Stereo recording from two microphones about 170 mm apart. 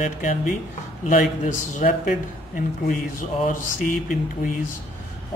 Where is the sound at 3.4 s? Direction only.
50° left (ahead or behind).